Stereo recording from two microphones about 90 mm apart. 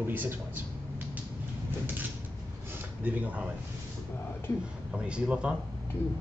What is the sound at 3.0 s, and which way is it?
Speech, 15° right (ahead or behind).